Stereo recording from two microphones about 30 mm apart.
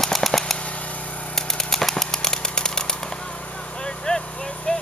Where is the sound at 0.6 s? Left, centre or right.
Left.